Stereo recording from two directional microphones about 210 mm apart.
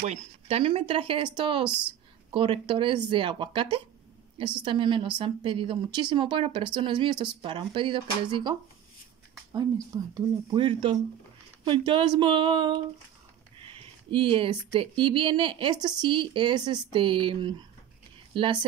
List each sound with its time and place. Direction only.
0.0 s speech: 30° right (ahead or behind)
1.7 s a woman's voice: 5° right (ahead or behind)
2.3 s speech: 25° right (ahead or behind)
10.1 s speech: 25° right (ahead or behind)
14.1 s speech: 25° right (ahead or behind)